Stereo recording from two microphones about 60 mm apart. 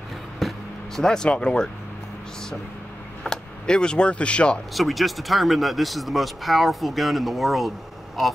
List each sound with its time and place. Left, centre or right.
0.4 s speech: centre
3.3 s speech: centre
4.7 s speech: centre